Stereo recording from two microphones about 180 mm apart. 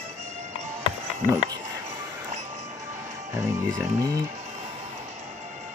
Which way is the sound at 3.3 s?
15° right (ahead or behind).